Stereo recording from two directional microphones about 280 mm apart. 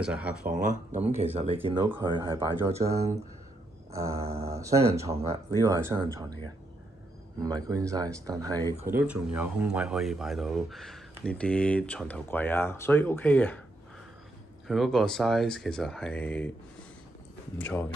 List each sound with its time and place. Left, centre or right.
0.0 s speech: centre
1.0 s speech: right
7.3 s speech: centre
14.7 s speech: centre